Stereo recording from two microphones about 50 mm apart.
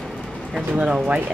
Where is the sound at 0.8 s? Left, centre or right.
Centre.